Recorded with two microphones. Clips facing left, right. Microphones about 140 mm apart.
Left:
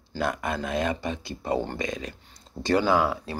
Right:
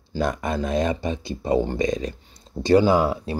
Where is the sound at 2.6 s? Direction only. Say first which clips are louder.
Right 5 dB; 15° right (ahead or behind).